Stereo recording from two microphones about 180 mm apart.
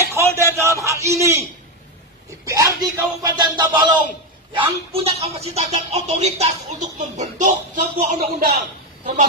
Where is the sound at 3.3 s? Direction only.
25° right (ahead or behind).